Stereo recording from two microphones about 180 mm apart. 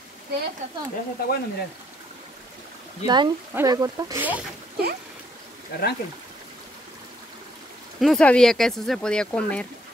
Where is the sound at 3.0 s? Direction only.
25° right (ahead or behind).